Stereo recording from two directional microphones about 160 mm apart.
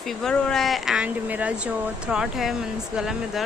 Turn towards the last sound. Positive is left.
turn(degrees=-5)  # may be behind; listen again after turning